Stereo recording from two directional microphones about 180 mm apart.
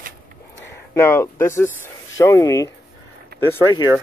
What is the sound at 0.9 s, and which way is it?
Speech, 15° left (ahead or behind).